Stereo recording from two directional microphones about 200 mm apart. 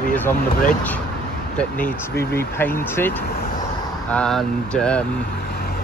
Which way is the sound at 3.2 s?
50° left (ahead or behind).